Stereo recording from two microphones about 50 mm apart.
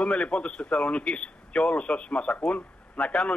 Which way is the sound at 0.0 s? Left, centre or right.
Left.